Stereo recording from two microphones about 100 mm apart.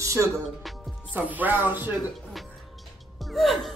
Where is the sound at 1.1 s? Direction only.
15° right (ahead or behind).